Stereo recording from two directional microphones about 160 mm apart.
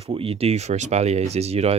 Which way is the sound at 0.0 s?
40° right (ahead or behind).